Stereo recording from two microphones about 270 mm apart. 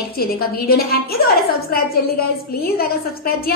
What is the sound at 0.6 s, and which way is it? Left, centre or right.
A woman's voice, left.